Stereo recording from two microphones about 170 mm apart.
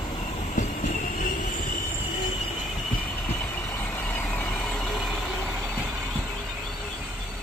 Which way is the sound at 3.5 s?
10° left (ahead or behind).